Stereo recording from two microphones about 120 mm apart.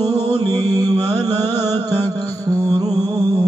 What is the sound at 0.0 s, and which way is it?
Mantra, 30° right (ahead or behind).